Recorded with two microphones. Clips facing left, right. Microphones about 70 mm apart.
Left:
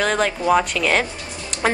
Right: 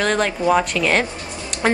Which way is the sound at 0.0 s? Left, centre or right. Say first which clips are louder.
Right 1 dB; centre.